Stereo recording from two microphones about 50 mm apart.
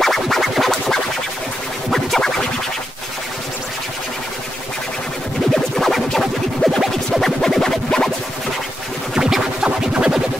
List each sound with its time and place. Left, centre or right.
0.0 s music: centre
5.5 s music: centre
9.1 s music: centre